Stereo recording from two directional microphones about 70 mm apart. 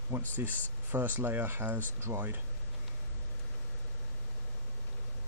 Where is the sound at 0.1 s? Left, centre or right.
Right.